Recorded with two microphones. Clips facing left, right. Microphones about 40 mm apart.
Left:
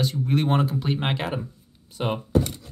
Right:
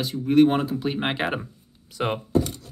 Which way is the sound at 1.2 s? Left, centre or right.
Right.